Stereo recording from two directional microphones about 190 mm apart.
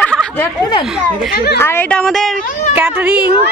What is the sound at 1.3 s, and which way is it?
Speech, 55° left (ahead or behind).